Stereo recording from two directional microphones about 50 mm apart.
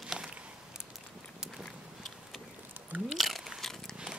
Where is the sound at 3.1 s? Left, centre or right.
Centre.